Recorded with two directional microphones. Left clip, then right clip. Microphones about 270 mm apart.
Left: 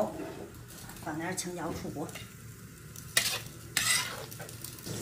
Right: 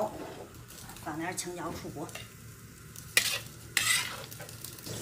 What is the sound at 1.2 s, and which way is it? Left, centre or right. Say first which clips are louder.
Speech: right 1 dB; centre.